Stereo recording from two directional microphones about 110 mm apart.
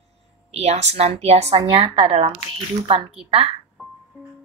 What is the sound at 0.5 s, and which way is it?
Speech, 80° right.